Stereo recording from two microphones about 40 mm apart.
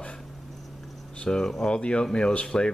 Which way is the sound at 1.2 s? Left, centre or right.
Centre.